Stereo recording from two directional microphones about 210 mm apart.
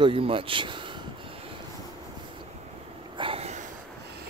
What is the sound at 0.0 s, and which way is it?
Speech, 25° right (ahead or behind).